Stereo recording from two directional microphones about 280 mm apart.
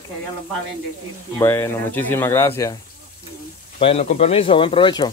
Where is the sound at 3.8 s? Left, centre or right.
Left.